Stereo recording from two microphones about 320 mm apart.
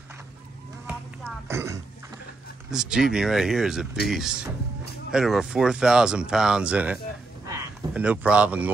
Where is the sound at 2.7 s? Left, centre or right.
Centre.